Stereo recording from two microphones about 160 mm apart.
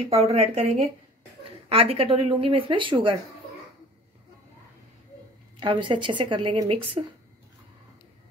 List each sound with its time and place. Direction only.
0.1 s speech: 40° right (ahead or behind)
5.6 s speech: 30° right (ahead or behind)